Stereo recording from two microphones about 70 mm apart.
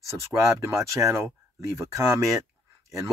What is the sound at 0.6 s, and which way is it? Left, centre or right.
Speech, right.